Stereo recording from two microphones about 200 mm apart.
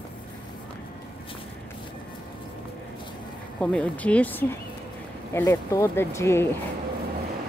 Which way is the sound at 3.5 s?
5° left (ahead or behind).